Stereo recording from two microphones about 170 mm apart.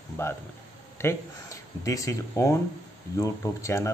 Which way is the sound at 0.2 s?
15° left (ahead or behind).